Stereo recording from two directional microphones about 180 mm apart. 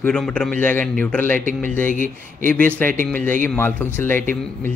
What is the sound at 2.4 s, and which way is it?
Speech, 50° right (ahead or behind).